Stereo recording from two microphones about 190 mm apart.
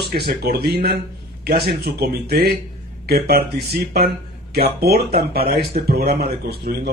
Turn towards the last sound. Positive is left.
turn(degrees=-55)  # may be behind; listen again after turning